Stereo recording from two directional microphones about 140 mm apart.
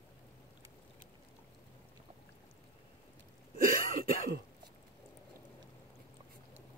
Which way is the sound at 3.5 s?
90° right.